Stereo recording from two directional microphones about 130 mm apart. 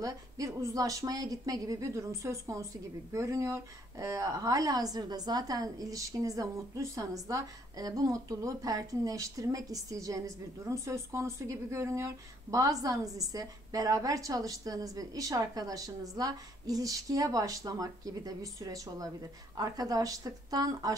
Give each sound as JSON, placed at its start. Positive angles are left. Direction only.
{"t": 0.0, "sound": "speech", "side_deg": -25}